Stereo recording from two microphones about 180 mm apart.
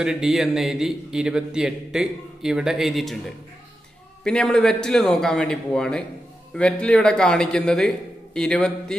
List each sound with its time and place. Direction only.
0.0 s a man's voice: 5° right (ahead or behind)
4.2 s a man's voice: 5° left (ahead or behind)